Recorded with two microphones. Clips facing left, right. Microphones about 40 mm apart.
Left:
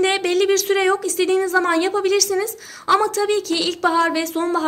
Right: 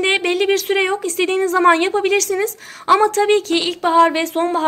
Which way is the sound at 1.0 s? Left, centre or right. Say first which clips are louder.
Right 1 dB; right.